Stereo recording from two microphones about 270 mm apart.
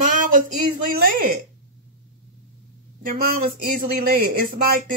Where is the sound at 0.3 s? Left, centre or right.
Right.